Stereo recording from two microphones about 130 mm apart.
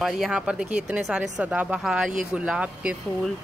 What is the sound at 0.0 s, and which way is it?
Speech, 5° right (ahead or behind).